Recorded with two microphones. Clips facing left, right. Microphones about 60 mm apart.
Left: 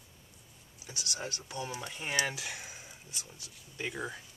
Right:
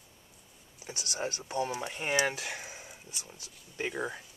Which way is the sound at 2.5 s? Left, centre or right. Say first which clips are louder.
Right 3 dB; right.